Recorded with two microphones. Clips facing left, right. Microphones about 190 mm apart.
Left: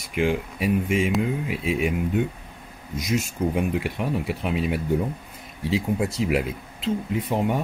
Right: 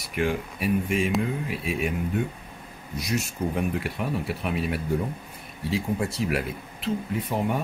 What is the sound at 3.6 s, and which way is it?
Speech, 15° left (ahead or behind).